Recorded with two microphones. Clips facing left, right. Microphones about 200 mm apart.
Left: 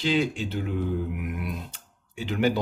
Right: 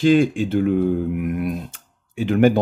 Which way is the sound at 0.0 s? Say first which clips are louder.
Right 9 dB; 50° right (ahead or behind).